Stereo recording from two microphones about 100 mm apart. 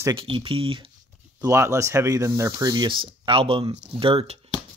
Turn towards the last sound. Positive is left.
turn(degrees=-65)  # may be behind; listen again after turning